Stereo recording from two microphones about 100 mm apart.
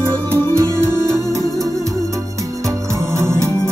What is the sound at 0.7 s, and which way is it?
Music, 25° right (ahead or behind).